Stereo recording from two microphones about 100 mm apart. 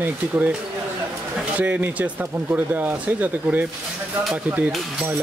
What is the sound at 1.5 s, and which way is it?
Speech, 15° right (ahead or behind).